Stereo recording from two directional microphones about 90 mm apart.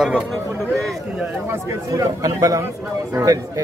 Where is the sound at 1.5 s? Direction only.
35° right (ahead or behind).